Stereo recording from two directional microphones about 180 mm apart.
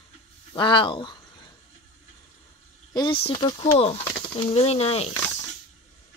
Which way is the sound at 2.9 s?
25° left (ahead or behind).